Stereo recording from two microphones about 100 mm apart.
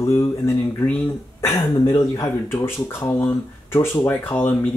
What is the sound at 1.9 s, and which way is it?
Speech, 35° left (ahead or behind).